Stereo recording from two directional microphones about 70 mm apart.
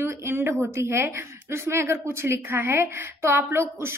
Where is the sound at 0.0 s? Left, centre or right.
Right.